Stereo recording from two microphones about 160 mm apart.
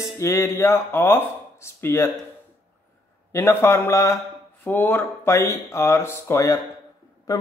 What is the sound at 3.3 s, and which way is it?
Speech, 15° left (ahead or behind).